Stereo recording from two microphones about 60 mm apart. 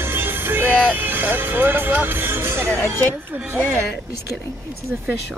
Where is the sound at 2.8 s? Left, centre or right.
Left.